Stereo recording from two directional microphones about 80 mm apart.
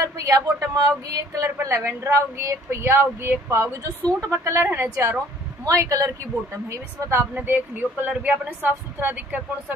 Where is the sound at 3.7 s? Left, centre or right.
Right.